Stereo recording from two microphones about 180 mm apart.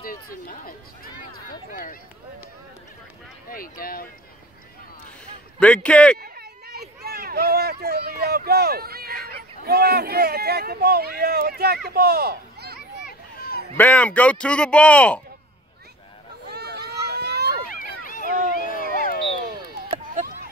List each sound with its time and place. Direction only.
0.0 s speech: 50° left (ahead or behind)
3.4 s speech: 50° left (ahead or behind)
5.6 s speech: 5° left (ahead or behind)
6.1 s speech: 60° right (ahead or behind)
13.7 s speech: 10° left (ahead or behind)
16.4 s boat: 65° right (ahead or behind)
17.6 s run: 50° left (ahead or behind)
18.7 s a sound: 50° left (ahead or behind)
19.8 s a sound: 70° right (ahead or behind)